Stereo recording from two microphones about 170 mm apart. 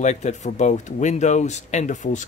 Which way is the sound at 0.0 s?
45° left (ahead or behind).